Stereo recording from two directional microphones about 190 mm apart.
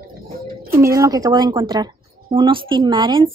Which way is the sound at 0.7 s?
15° right (ahead or behind).